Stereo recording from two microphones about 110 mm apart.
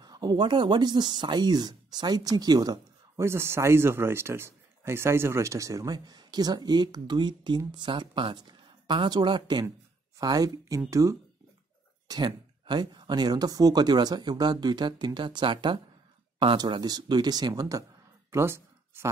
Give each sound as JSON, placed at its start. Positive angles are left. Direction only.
{"t": 0.0, "sound": "speech", "side_deg": -40}
{"t": 3.2, "sound": "speech", "side_deg": -25}
{"t": 10.1, "sound": "speech", "side_deg": -35}
{"t": 12.1, "sound": "speech", "side_deg": -45}
{"t": 18.3, "sound": "a sound", "side_deg": -25}